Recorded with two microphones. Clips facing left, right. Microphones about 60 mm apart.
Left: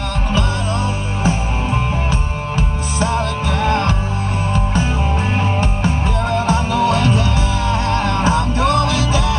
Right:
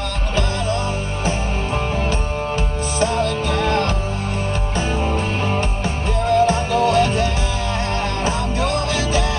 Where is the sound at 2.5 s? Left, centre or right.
Left.